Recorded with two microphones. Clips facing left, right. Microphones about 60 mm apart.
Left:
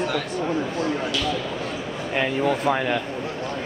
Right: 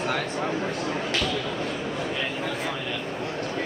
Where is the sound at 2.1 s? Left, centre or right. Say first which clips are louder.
Left 7 dB; left.